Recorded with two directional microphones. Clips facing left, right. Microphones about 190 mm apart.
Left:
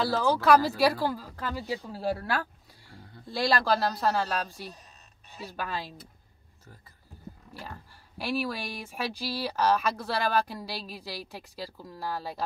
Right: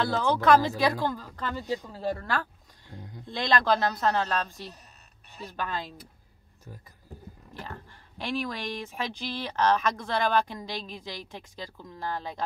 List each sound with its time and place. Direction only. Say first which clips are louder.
0.0 s speech: even; 5° left (ahead or behind)
2.9 s a sound: right 6 dB; 15° right (ahead or behind)
3.3 s speech: right 1 dB; 5° left (ahead or behind)
8.2 s speech: left 1 dB; 5° left (ahead or behind)